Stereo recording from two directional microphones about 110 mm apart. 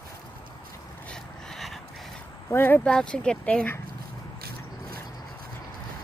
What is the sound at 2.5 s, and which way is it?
Speech, 20° left (ahead or behind).